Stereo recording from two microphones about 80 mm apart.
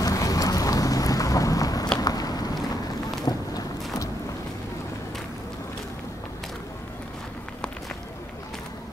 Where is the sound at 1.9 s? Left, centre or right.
Left.